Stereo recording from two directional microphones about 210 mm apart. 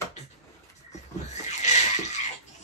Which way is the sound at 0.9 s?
35° left (ahead or behind).